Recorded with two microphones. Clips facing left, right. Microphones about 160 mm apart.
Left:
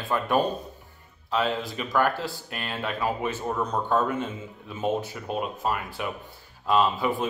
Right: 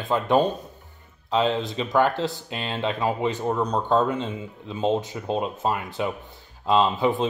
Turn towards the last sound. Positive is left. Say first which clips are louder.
# right 3 dB
turn(degrees=-20)  # may be behind; listen again after turning